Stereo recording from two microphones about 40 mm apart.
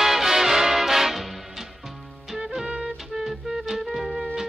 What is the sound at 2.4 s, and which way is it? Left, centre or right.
Music, centre.